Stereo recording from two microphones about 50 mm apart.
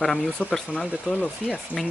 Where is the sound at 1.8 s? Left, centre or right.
Centre.